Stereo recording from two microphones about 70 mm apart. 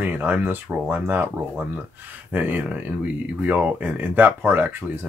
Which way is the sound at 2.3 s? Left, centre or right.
Right.